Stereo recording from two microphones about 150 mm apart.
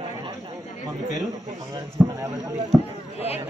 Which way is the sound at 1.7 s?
20° right (ahead or behind).